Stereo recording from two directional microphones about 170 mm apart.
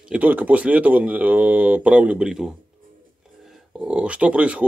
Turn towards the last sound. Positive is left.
turn(degrees=-5)  # may be behind; listen again after turning